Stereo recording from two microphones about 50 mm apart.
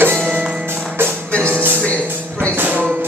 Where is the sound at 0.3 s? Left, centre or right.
Right.